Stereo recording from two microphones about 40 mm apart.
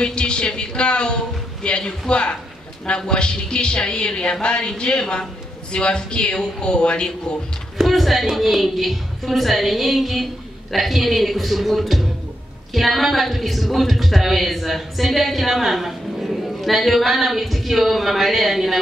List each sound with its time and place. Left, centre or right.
0.0 s a man's voice: left
7.7 s a woman's voice: centre